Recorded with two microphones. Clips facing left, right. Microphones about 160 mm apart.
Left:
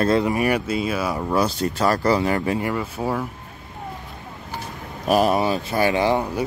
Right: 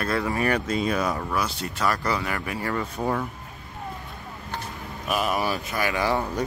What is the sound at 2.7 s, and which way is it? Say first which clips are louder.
Speech: left 2 dB; 5° left (ahead or behind).